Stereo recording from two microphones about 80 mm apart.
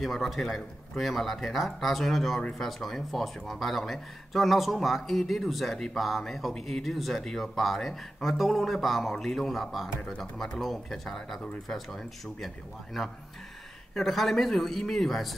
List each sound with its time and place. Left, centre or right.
0.0 s speech: centre